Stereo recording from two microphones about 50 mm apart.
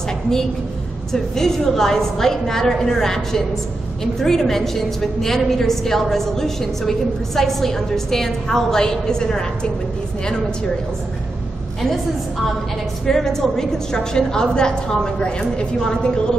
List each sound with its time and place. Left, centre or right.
1.1 s a woman's voice: centre
13.0 s a woman's voice: centre